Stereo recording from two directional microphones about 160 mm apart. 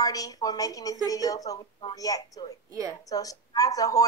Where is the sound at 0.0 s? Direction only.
20° left (ahead or behind).